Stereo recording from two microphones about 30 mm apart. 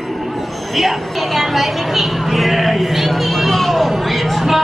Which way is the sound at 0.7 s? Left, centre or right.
Centre.